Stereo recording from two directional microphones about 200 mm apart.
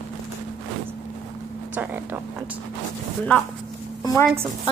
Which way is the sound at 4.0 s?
20° left (ahead or behind).